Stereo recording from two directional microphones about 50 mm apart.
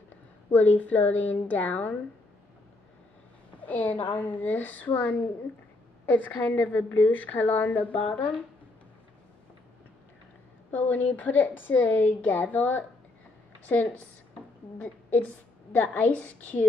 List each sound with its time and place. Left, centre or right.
0.5 s a woman's voice: left
3.6 s a woman's voice: left
10.7 s a woman's voice: left
14.8 s a woman's voice: left